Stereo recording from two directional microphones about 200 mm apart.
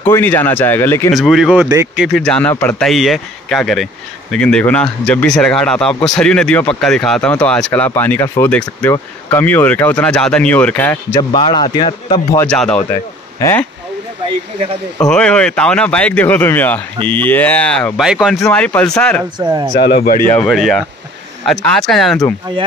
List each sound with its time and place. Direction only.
0.1 s speech: 10° left (ahead or behind)
1.1 s speech: centre (ahead or behind)
11.1 s a man's voice: 25° left (ahead or behind)
12.4 s speech: 5° left (ahead or behind)
15.0 s speech: 5° left (ahead or behind)
19.3 s speech: 20° right (ahead or behind)
19.7 s speech: 50° left (ahead or behind)
20.2 s speech: 5° left (ahead or behind)